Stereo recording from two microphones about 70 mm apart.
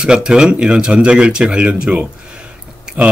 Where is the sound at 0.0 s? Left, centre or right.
Centre.